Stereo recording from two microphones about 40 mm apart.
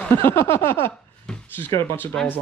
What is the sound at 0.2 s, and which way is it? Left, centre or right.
Speech, left.